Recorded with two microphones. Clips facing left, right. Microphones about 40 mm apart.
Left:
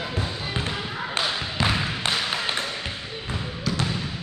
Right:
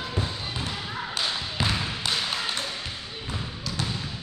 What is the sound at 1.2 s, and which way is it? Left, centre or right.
Basketball bounce, centre.